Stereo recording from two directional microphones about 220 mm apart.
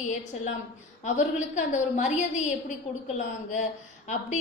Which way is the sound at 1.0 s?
35° left (ahead or behind).